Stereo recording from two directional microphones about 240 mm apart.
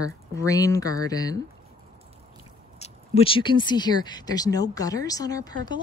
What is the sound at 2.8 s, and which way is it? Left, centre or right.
Speech, left.